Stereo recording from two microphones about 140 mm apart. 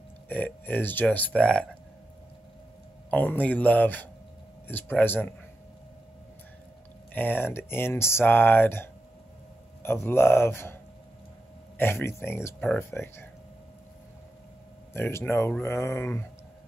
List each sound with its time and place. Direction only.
0.3 s speech: 10° left (ahead or behind)
3.1 s speech: 10° left (ahead or behind)
7.2 s speech: 15° left (ahead or behind)
11.8 s speech: 15° left (ahead or behind)
12.5 s speech: 5° left (ahead or behind)
15.0 s speech: 15° left (ahead or behind)